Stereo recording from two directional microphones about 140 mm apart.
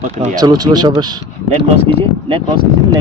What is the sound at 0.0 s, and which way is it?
Speech, 50° right (ahead or behind).